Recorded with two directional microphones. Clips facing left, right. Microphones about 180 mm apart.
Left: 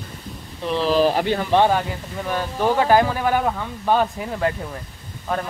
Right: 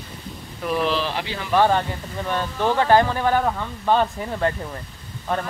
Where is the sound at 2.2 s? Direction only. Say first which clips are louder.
Left 1 dB; 10° left (ahead or behind).